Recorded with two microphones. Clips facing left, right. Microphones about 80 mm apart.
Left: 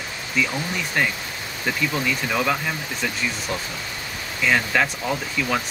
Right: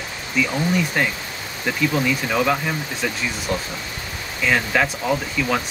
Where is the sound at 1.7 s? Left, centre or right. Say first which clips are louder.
Right 3 dB; centre.